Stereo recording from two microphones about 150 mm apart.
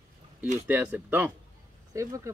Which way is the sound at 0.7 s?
10° right (ahead or behind).